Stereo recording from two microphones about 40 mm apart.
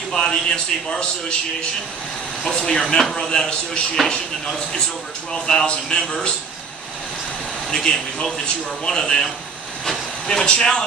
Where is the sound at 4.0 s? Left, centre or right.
Centre.